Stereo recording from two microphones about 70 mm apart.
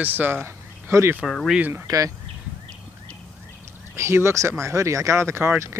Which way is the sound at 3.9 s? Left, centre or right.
Right.